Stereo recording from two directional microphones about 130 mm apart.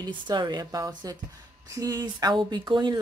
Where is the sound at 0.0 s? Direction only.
30° right (ahead or behind).